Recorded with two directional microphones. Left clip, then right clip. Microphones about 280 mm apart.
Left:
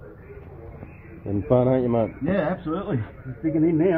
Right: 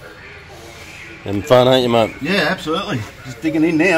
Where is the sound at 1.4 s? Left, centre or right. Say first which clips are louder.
Right 9 dB; right.